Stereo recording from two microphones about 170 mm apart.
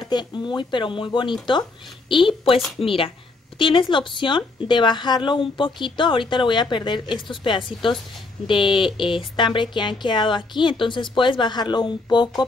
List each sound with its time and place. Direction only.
0.0 s a woman's voice: 25° left (ahead or behind)